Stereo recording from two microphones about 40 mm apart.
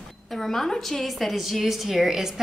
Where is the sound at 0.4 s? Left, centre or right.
Centre.